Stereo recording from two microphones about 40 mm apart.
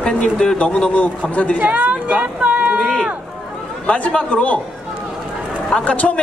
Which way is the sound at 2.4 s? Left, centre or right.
Right.